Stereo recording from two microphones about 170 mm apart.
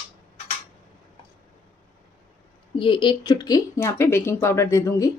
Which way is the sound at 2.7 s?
30° left (ahead or behind).